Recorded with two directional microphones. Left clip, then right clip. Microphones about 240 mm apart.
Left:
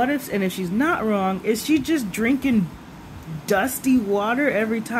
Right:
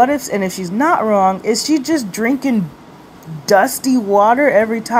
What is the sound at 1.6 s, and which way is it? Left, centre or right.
Speech, centre.